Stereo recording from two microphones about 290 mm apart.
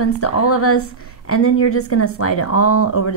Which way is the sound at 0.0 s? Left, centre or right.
Left.